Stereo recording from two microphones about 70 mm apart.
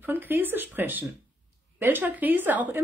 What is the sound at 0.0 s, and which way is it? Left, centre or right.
A woman's voice, right.